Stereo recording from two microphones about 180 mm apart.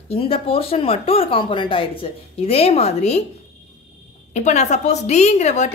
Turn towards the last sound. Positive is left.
turn(degrees=40)  # may be behind; listen again after turning